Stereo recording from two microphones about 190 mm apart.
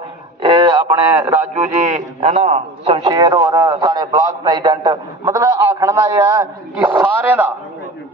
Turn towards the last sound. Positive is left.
turn(degrees=-10)  # may be behind; listen again after turning